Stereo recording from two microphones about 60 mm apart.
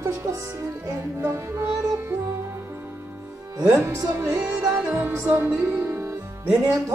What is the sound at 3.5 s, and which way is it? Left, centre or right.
Speech, right.